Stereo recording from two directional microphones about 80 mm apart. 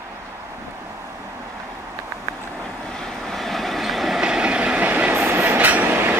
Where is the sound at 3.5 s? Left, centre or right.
Centre.